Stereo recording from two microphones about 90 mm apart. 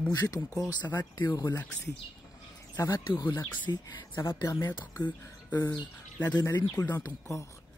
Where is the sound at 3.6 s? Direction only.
55° left (ahead or behind).